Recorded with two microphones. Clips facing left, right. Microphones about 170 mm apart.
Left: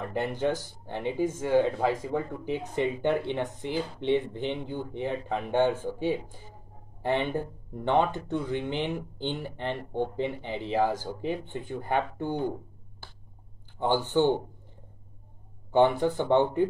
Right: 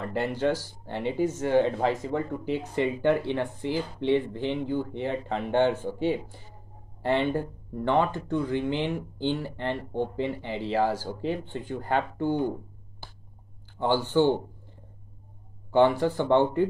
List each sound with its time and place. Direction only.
0.0 s speech: 15° left (ahead or behind)
13.7 s speech: 15° left (ahead or behind)
15.7 s speech: 15° left (ahead or behind)